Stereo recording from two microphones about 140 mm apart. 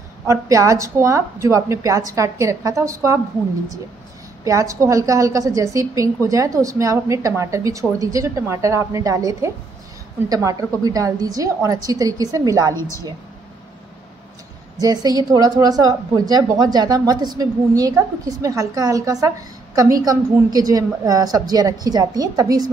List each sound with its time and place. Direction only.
0.3 s a woman's voice: 20° right (ahead or behind)
4.5 s a woman's voice: 25° right (ahead or behind)
12.7 s a woman's voice: 20° left (ahead or behind)
14.8 s a woman's voice: 25° right (ahead or behind)